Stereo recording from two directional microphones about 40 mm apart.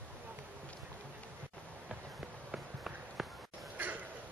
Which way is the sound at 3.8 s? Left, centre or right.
Right.